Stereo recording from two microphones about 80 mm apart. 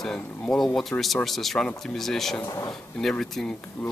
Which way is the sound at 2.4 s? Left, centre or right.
Left.